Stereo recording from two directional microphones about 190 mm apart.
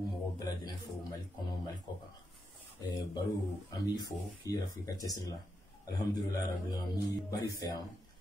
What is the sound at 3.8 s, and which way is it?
Speech, 20° left (ahead or behind).